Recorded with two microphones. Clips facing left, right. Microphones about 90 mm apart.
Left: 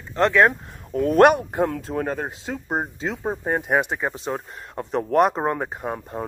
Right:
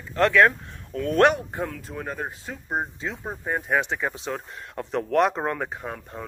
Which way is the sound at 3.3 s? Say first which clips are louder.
Left 5 dB; 35° left (ahead or behind).